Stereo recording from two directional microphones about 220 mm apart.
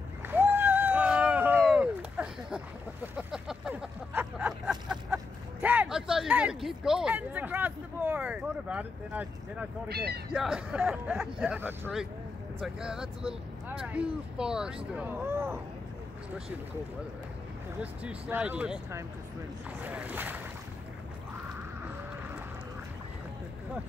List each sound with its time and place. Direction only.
0.3 s run: 10° right (ahead or behind)
1.6 s a sound: 5° right (ahead or behind)
9.8 s speech: 45° right (ahead or behind)
10.3 s speech: centre (ahead or behind)
18.0 s speech: 5° right (ahead or behind)